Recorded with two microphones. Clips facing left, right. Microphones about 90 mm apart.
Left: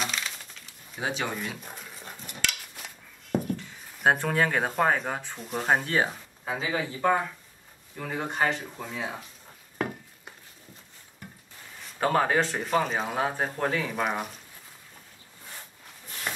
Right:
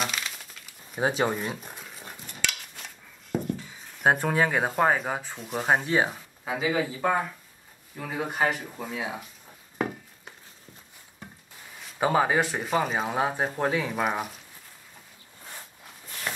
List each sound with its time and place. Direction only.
0.9 s speech: 35° right (ahead or behind)
1.6 s cutlery: centre (ahead or behind)
8.1 s speech: 10° right (ahead or behind)
11.8 s speech: 10° right (ahead or behind)
16.3 s wood: 10° left (ahead or behind)